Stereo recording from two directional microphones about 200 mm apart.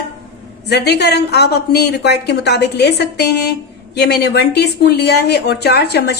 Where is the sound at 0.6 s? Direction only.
55° left (ahead or behind).